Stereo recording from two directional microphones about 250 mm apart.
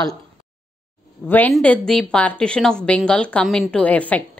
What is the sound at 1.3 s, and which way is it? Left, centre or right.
A woman's voice, centre.